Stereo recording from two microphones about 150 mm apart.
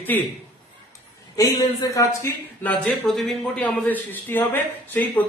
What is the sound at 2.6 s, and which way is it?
A man's voice, centre (ahead or behind).